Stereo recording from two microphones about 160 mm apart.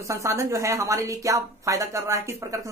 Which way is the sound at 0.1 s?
20° right (ahead or behind).